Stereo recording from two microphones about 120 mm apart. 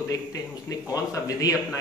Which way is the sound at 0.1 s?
30° left (ahead or behind).